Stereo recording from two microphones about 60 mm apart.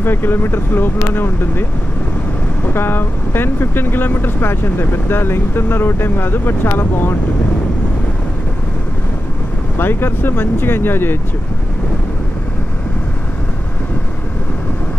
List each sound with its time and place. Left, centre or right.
0.0 s speech: left
2.7 s speech: left
9.8 s speech: left